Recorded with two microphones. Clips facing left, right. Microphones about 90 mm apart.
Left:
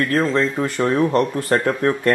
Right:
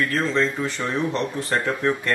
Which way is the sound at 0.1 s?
45° left (ahead or behind).